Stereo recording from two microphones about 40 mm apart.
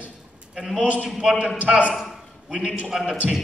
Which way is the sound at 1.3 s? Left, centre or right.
Right.